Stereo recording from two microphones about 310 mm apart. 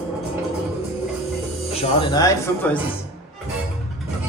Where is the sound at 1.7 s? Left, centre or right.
Centre.